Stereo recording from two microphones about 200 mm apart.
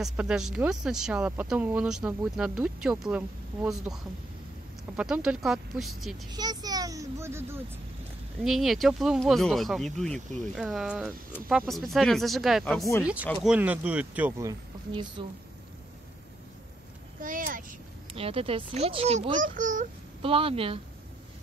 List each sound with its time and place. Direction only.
0.0 s speech: 5° right (ahead or behind)
6.3 s speech: 20° right (ahead or behind)
8.5 s speech: centre (ahead or behind)
14.9 s speech: 25° right (ahead or behind)
17.2 s speech: 45° right (ahead or behind)
18.1 s a child's voice: 30° right (ahead or behind)
20.2 s speech: 25° right (ahead or behind)